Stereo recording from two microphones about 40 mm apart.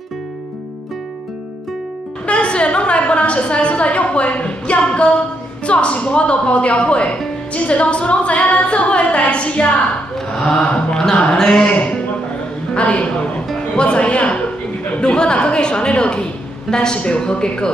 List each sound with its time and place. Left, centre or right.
2.2 s a sound: left
5.7 s a woman's voice: left
10.1 s a sound: centre
10.6 s a woman's voice: left
11.3 s speech: centre
11.6 s a woman's voice: left